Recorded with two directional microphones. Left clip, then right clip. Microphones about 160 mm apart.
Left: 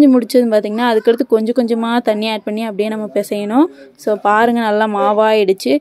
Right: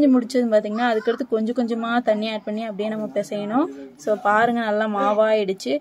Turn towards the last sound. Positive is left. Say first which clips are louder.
# left 8 dB
turn(degrees=45)  # may be behind; listen again after turning